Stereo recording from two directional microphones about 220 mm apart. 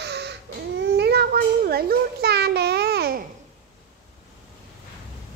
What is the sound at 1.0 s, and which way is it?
Child singing, 45° right (ahead or behind).